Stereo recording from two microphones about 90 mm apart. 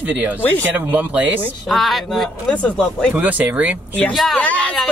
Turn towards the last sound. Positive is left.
turn(degrees=15)  # may be behind; listen again after turning